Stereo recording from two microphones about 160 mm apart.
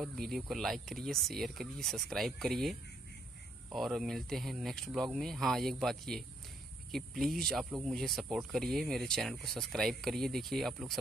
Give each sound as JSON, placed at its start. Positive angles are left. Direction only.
{"t": 0.0, "sound": "speech", "side_deg": 0}